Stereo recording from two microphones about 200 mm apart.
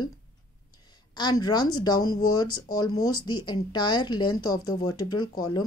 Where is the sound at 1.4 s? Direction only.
20° left (ahead or behind).